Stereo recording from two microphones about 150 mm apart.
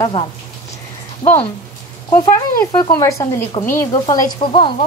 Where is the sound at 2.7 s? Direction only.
30° left (ahead or behind).